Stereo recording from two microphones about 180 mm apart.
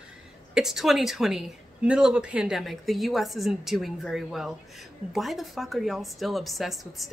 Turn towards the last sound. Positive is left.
turn(degrees=0)  # may be behind; listen again after turning